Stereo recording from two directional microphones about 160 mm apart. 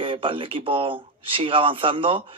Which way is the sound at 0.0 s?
35° right (ahead or behind).